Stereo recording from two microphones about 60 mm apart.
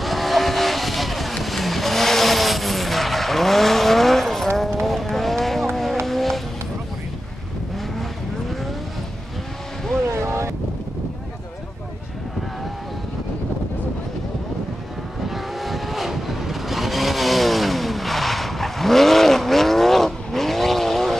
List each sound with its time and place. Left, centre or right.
0.0 s vehicle: centre
10.0 s vehicle: right
15.2 s vehicle: centre